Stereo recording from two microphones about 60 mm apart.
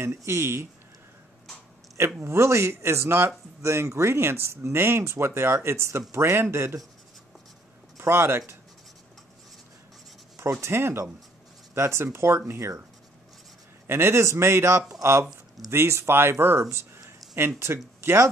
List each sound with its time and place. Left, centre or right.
0.0 s speech: right
2.2 s speech: right
8.0 s speech: right
10.3 s speech: right
13.8 s speech: right
16.7 s a sound: right
18.0 s speech: right